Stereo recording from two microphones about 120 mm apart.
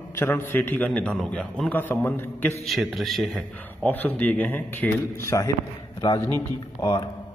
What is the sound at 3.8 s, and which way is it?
A man's voice, 15° left (ahead or behind).